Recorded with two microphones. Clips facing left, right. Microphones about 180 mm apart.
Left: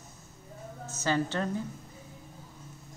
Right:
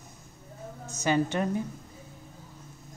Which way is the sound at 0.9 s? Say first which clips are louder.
Right 3 dB; 15° right (ahead or behind).